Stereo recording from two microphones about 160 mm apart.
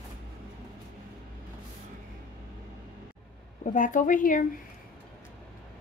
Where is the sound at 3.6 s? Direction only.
55° left (ahead or behind).